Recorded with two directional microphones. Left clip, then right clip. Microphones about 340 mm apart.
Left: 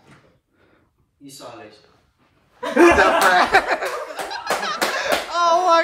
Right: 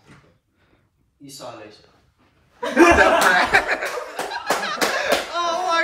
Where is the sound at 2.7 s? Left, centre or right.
Centre.